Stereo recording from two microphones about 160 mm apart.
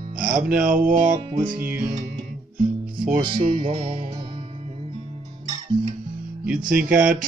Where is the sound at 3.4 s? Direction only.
55° right (ahead or behind).